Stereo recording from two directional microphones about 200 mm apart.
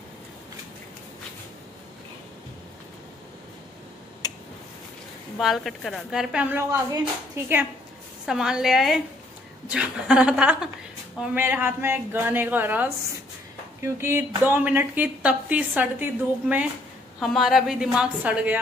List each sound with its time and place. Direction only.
4.2 s a sound: 20° left (ahead or behind)
5.4 s a woman's voice: centre (ahead or behind)
8.3 s a woman's voice: 5° right (ahead or behind)